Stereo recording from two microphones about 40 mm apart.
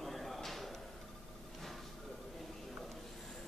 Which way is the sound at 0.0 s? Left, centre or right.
Centre.